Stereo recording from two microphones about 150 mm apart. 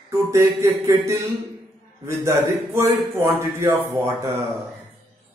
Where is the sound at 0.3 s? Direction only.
20° right (ahead or behind).